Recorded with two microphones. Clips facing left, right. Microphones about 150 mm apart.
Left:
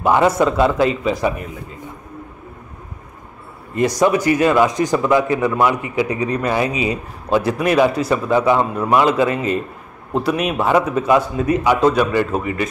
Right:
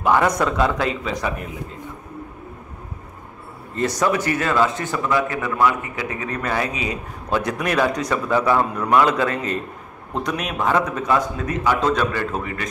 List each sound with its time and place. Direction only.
0.5 s speech: 5° left (ahead or behind)
3.7 s speech: 10° left (ahead or behind)
8.3 s a man's voice: 20° left (ahead or behind)